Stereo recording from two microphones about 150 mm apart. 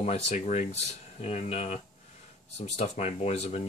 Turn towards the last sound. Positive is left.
turn(degrees=45)  # may be behind; listen again after turning